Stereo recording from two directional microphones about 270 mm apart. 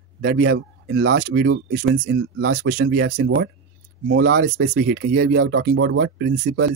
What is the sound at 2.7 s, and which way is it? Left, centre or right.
Speech, right.